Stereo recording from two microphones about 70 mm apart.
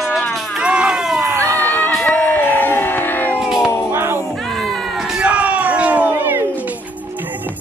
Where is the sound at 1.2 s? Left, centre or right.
Right.